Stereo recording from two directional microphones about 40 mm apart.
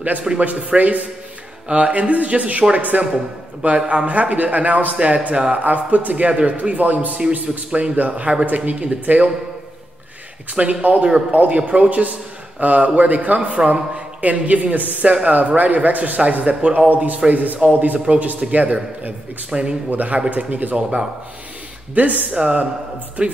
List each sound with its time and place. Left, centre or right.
0.4 s a man's voice: right
4.9 s a man's voice: right
5.6 s a man's voice: right
10.5 s a man's voice: right
17.6 s a man's voice: right
19.5 s a man's voice: right
19.9 s a man's voice: right
20.7 s a man's voice: right
21.9 s a man's voice: right
22.3 s a man's voice: right